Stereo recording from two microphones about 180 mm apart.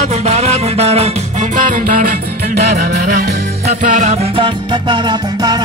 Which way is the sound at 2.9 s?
60° right (ahead or behind).